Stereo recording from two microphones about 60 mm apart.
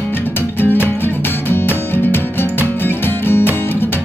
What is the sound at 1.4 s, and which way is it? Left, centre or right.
Music, left.